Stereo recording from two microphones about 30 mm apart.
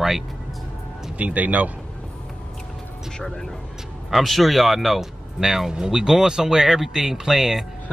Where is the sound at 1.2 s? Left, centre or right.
Right.